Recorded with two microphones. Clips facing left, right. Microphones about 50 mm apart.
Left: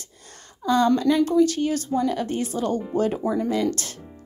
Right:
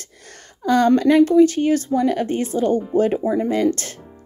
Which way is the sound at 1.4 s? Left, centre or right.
Right.